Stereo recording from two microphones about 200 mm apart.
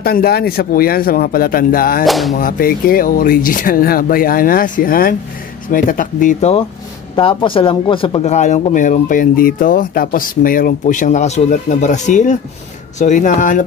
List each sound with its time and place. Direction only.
0.0 s speech: 50° left (ahead or behind)
2.0 s speech: centre (ahead or behind)
2.3 s speech: 45° left (ahead or behind)
7.2 s speech: 25° left (ahead or behind)